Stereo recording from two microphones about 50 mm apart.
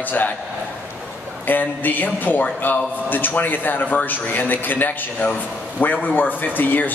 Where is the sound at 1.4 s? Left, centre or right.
Left.